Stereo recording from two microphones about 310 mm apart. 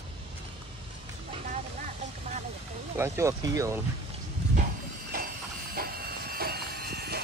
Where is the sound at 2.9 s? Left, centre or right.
Centre.